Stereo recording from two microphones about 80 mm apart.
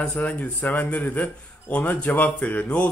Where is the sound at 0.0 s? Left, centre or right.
Centre.